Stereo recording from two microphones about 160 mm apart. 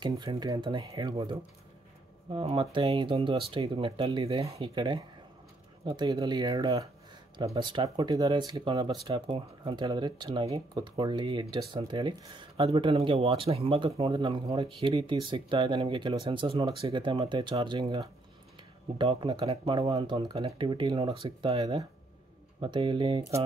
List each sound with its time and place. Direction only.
0.2 s speech: 25° right (ahead or behind)
1.1 s speech: 35° right (ahead or behind)